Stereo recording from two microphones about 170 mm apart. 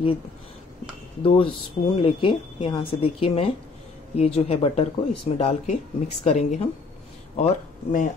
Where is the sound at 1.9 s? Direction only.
30° left (ahead or behind); by 8.0 s 50° left (ahead or behind).